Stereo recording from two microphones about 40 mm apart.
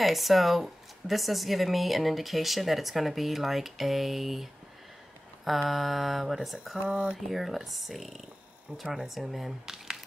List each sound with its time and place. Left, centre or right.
0.0 s speech: centre
6.9 s speech: centre
7.2 s speech: centre